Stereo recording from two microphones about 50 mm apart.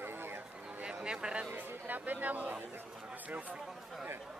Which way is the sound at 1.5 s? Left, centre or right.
Right.